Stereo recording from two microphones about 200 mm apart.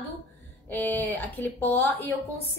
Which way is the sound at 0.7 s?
10° left (ahead or behind).